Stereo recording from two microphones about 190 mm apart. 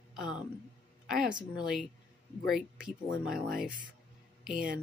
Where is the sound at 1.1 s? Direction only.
5° right (ahead or behind).